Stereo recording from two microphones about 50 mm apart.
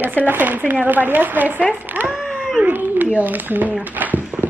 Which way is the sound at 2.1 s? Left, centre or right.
Centre.